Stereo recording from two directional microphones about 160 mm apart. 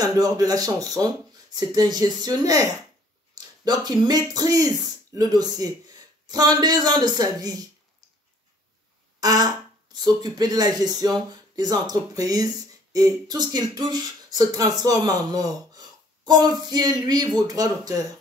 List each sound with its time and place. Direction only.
0.0 s speech: 25° right (ahead or behind)
9.2 s a sound: 25° right (ahead or behind)
9.9 s speech: 25° right (ahead or behind)